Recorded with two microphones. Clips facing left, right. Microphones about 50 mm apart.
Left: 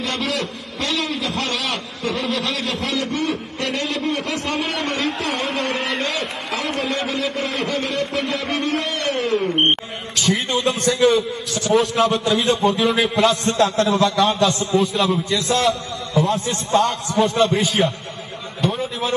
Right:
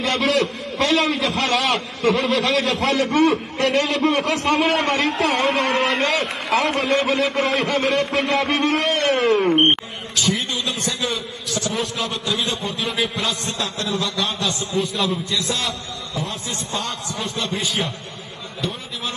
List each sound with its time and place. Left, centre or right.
0.0 s a man's voice: right
10.1 s a man's voice: left
12.6 s a man's voice: centre
13.3 s a man's voice: left
13.9 s a man's voice: left
14.7 s a man's voice: centre
15.3 s a man's voice: left
17.2 s a man's voice: left